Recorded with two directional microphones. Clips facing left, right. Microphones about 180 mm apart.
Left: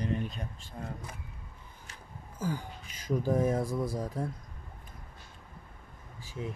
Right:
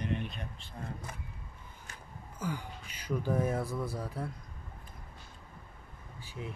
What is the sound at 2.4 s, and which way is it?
Speech, 45° left (ahead or behind).